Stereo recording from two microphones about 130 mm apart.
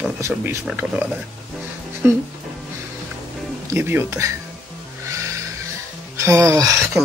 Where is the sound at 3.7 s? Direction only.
15° right (ahead or behind).